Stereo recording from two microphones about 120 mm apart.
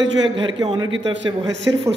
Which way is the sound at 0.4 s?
40° right (ahead or behind).